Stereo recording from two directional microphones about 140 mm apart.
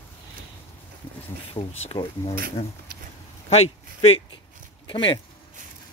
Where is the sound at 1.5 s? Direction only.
45° left (ahead or behind).